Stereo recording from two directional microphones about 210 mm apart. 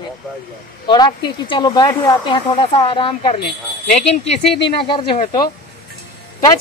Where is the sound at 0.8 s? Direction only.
20° left (ahead or behind).